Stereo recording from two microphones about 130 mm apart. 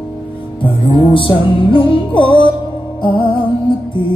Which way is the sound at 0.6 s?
40° left (ahead or behind).